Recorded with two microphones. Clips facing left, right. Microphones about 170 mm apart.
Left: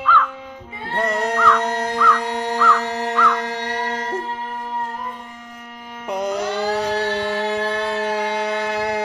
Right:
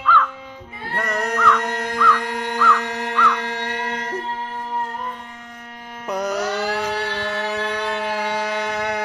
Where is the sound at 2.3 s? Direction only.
35° left (ahead or behind).